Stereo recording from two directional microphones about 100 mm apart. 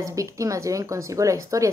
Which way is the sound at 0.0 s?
35° right (ahead or behind).